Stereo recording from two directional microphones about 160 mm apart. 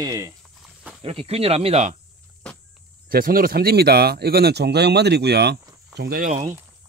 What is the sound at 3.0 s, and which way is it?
Speech, 65° right (ahead or behind).